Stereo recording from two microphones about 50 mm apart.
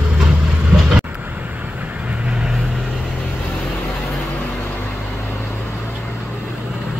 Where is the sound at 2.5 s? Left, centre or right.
Centre.